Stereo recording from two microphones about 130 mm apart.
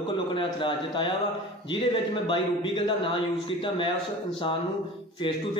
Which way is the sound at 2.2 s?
40° left (ahead or behind).